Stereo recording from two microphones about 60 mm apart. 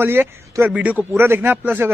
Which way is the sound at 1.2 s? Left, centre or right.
Right.